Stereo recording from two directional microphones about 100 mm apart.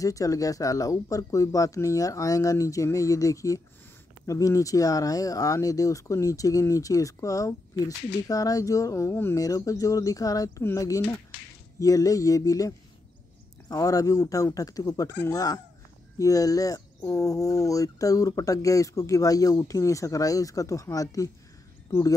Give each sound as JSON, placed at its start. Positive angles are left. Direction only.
{"t": 0.0, "sound": "speech", "side_deg": 35}